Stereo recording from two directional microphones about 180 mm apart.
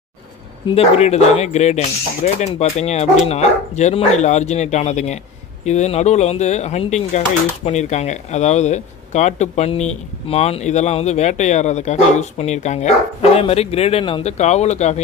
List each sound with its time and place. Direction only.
0.7 s speech: 35° left (ahead or behind)